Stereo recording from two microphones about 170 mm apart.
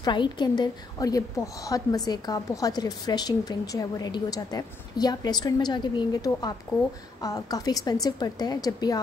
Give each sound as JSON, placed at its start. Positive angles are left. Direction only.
{"t": 0.0, "sound": "a woman's voice", "side_deg": 25}